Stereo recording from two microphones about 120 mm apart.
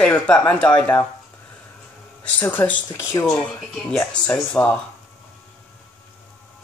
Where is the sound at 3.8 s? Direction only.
10° left (ahead or behind).